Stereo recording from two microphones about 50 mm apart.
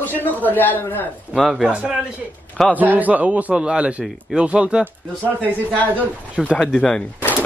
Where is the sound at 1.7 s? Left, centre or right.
Centre.